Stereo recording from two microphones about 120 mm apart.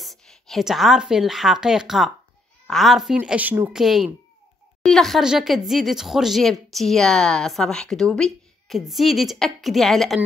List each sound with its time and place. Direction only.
0.0 s speech: 5° left (ahead or behind)
3.2 s speech: 10° right (ahead or behind)
3.7 s speech: centre (ahead or behind)